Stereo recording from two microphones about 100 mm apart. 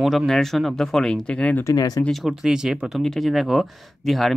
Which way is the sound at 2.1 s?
5° right (ahead or behind).